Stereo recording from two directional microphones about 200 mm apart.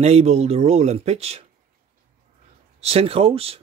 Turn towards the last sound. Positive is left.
turn(degrees=-30)  # may be behind; listen again after turning